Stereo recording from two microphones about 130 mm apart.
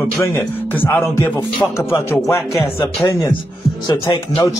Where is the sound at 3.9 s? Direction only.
35° left (ahead or behind).